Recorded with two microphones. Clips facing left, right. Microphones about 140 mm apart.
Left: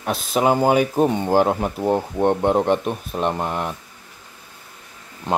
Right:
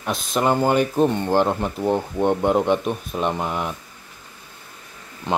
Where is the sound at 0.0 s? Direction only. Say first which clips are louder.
Left 2 dB; 5° left (ahead or behind).